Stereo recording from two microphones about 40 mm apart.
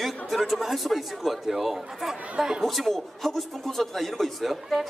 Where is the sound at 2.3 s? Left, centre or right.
Right.